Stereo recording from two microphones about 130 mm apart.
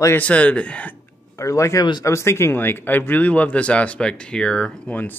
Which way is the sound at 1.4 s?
25° left (ahead or behind).